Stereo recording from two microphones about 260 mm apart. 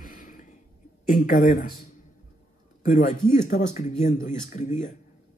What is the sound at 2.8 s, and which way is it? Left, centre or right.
A man's voice, left.